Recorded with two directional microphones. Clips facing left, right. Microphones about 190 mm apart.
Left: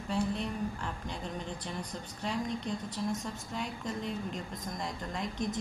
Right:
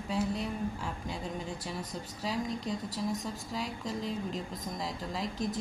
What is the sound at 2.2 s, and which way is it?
A woman's voice, centre (ahead or behind).